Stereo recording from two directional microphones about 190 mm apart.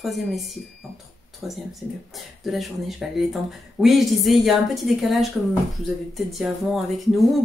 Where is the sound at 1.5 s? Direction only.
Centre (ahead or behind).